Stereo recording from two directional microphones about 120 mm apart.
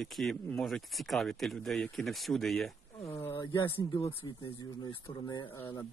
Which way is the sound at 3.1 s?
20° left (ahead or behind).